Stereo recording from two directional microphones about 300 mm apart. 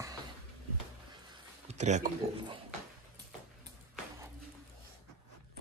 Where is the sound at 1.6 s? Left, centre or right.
Right.